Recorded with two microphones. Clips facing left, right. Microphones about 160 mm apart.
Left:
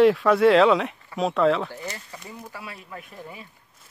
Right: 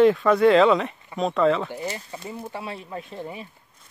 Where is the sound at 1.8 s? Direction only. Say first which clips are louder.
Right 5 dB; 25° right (ahead or behind).